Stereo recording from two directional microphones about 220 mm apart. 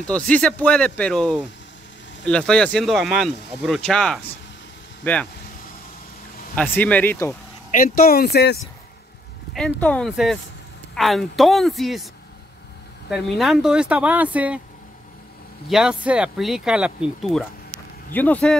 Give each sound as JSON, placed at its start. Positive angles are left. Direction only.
{"t": 0.0, "sound": "speech", "side_deg": 5}
{"t": 6.5, "sound": "speech", "side_deg": 5}
{"t": 7.7, "sound": "speech", "side_deg": 40}
{"t": 9.5, "sound": "speech", "side_deg": 0}
{"t": 13.1, "sound": "speech", "side_deg": 0}
{"t": 15.7, "sound": "speech", "side_deg": -5}